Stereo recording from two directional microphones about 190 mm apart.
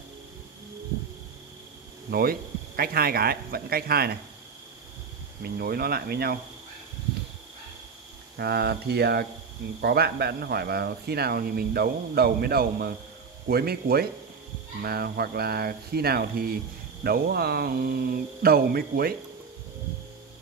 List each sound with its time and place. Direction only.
2.0 s speech: 50° right (ahead or behind)
5.4 s speech: 55° right (ahead or behind)
8.4 s speech: 60° right (ahead or behind)